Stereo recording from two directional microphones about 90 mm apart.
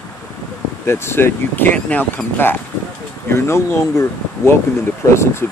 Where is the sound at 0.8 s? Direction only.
30° left (ahead or behind).